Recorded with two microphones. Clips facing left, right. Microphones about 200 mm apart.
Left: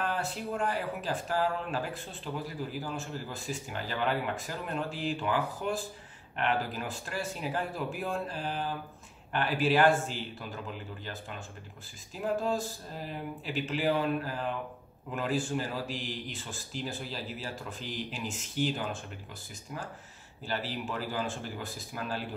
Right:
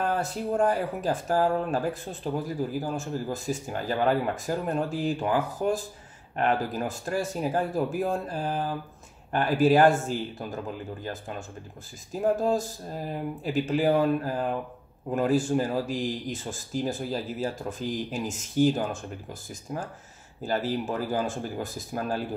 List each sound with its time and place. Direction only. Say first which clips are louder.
0.0 s a man's voice: right 5 dB; 45° right (ahead or behind)